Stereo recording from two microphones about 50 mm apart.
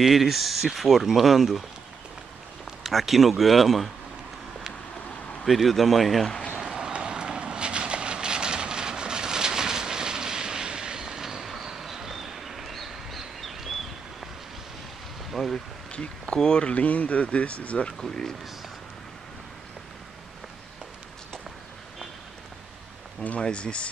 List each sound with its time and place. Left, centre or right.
0.0 s speech: centre
2.8 s speech: centre
5.4 s speech: centre
6.6 s run: centre
6.9 s vehicle: centre
15.3 s a sound: centre
15.9 s a sound: left
16.3 s speech: centre
18.0 s speech: centre
23.4 s speech: left